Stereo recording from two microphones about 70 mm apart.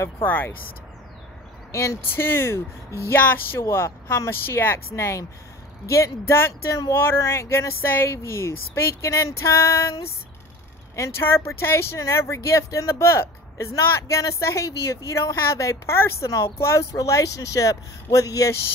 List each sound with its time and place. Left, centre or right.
0.2 s speech: left
1.7 s speech: left
6.3 s speech: left
11.0 s speech: left
16.5 s speech: left
16.9 s speech: left